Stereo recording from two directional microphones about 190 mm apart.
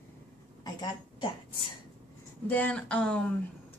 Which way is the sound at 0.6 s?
20° left (ahead or behind).